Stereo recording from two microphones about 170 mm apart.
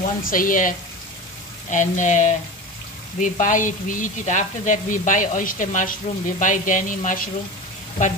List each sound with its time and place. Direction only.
0.0 s speech: 55° left (ahead or behind)